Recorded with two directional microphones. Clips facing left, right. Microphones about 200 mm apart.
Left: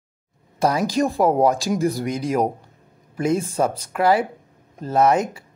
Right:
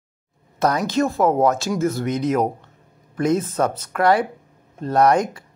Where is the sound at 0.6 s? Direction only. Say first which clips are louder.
Even; 10° left (ahead or behind).